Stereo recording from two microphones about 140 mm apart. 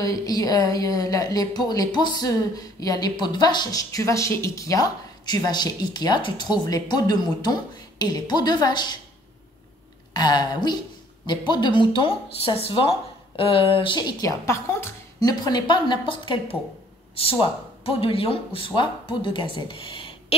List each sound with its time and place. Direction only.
0.0 s a woman's voice: 25° left (ahead or behind)
10.1 s speech: 30° left (ahead or behind)
14.4 s speech: 20° left (ahead or behind); by 20.3 s 35° left (ahead or behind)